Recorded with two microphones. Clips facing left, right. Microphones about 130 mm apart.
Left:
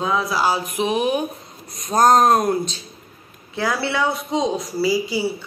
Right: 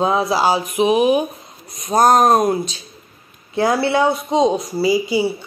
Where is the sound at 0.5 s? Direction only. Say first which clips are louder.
Right 5 dB; 15° right (ahead or behind).